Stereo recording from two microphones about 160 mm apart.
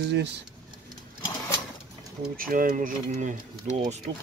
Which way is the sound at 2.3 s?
60° right (ahead or behind).